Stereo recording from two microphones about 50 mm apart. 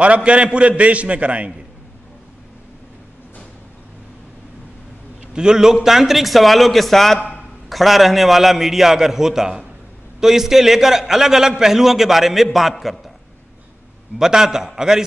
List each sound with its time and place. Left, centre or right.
0.0 s a man's voice: right
5.3 s a man's voice: centre
14.1 s a man's voice: centre